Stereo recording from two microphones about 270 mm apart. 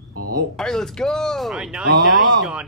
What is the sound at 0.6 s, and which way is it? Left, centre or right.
Speech, centre.